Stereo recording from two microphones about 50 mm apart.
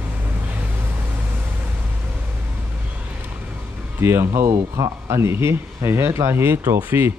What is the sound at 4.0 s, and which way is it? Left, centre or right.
Speech, right.